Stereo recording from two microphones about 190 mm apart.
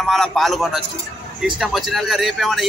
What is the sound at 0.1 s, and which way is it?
A man's voice, centre (ahead or behind).